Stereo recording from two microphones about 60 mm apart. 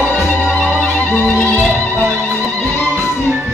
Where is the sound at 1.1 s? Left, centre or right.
Centre.